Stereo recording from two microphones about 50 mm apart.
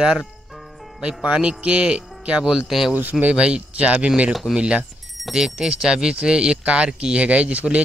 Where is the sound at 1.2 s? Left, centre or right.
Right.